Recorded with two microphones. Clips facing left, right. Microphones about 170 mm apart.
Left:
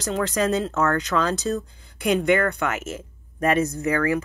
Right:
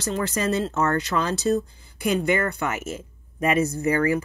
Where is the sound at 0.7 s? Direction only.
10° right (ahead or behind).